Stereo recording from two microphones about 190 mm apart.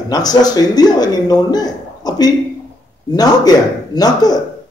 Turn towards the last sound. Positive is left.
turn(degrees=20)  # may be behind; listen again after turning